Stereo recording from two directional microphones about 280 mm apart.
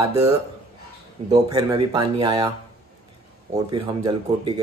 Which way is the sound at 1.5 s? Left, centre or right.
Centre.